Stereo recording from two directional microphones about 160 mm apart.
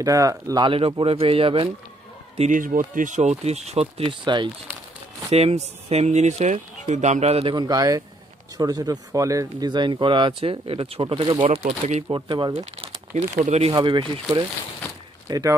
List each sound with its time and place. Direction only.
0.0 s speech: 20° right (ahead or behind)
2.3 s speech: 50° right (ahead or behind)
7.5 s speech: 25° right (ahead or behind); by 12.0 s 45° right (ahead or behind)
12.1 s speech: 30° right (ahead or behind)
12.5 s speech: 45° right (ahead or behind)
13.7 s speech: 30° right (ahead or behind)
15.2 s speech: 25° right (ahead or behind)